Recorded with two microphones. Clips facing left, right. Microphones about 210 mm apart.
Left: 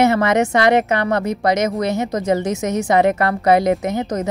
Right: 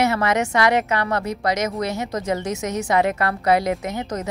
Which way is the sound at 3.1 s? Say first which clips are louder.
Left 4 dB; 50° left (ahead or behind).